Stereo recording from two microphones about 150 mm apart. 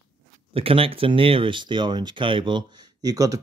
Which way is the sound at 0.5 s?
40° right (ahead or behind).